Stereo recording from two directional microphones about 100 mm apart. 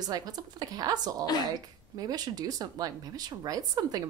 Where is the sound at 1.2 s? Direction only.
40° left (ahead or behind).